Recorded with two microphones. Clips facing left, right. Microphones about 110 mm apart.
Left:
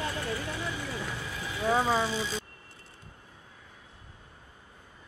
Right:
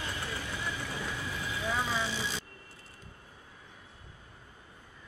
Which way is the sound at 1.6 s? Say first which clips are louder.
Left 8 dB; 45° left (ahead or behind).